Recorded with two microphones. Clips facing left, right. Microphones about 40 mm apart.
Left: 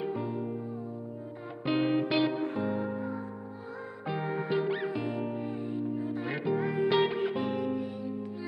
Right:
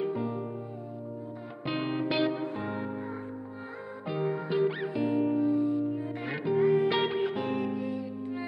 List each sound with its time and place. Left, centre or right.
0.1 s music: centre
1.6 s music: centre
2.6 s music: right
4.2 s music: left
4.5 s music: centre
5.4 s music: left
6.5 s music: centre
7.4 s music: right